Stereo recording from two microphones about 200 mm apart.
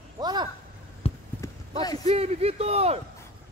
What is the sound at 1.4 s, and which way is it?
Clip-clop, 15° left (ahead or behind).